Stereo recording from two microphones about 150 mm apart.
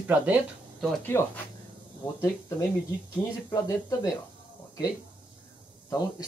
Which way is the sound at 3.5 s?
25° left (ahead or behind).